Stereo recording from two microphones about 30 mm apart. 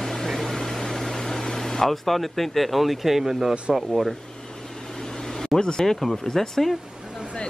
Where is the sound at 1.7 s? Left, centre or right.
Centre.